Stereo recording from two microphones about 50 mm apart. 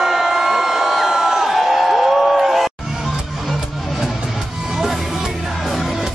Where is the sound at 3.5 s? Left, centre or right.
Centre.